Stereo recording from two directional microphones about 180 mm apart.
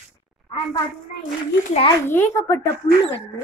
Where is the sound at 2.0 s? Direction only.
15° left (ahead or behind).